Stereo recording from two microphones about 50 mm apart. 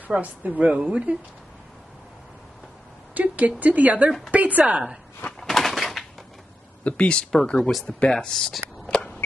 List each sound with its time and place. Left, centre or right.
0.2 s a woman's voice: right
3.2 s a woman's voice: right
5.4 s a sound: centre
6.8 s speech: left
8.1 s speech: centre